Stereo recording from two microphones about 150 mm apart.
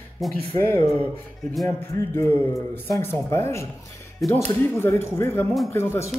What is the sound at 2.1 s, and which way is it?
Speech, 15° left (ahead or behind).